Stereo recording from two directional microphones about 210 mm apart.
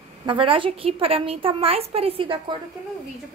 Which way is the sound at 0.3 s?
25° right (ahead or behind).